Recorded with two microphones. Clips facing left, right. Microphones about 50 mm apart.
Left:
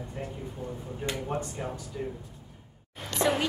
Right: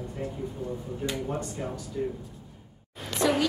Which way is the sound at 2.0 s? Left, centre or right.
Centre.